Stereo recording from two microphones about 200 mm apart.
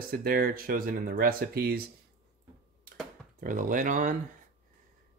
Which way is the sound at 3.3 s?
40° right (ahead or behind).